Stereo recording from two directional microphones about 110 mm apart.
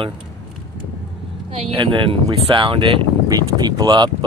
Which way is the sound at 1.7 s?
50° right (ahead or behind).